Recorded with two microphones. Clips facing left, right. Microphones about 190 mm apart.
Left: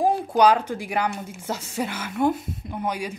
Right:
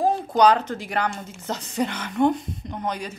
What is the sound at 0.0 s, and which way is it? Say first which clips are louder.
A woman's voice: even; 10° left (ahead or behind).